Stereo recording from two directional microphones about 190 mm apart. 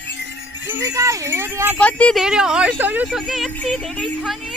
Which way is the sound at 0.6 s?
15° right (ahead or behind).